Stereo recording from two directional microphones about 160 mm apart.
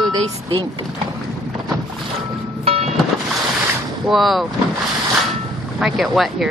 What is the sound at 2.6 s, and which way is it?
Music, 40° right (ahead or behind).